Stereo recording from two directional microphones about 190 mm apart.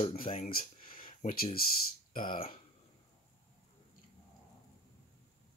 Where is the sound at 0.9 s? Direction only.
50° left (ahead or behind).